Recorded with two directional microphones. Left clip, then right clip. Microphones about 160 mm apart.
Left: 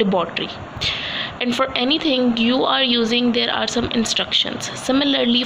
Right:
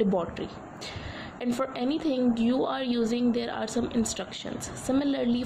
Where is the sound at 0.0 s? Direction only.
10° right (ahead or behind).